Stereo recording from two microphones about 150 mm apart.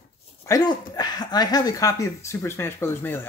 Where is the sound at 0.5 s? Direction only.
25° left (ahead or behind).